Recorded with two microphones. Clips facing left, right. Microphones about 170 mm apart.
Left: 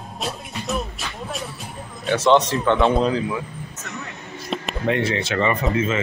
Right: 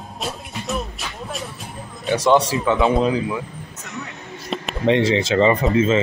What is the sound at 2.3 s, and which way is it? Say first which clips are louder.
Speech: even; 10° right (ahead or behind).